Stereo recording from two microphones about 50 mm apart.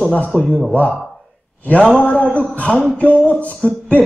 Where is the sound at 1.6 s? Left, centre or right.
Left.